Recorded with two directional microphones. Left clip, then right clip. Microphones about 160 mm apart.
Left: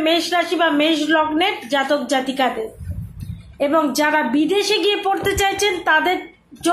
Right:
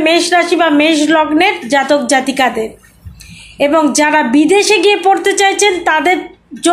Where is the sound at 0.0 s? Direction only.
30° right (ahead or behind).